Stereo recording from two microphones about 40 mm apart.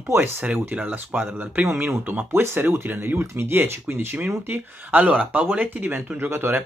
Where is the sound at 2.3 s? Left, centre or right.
Right.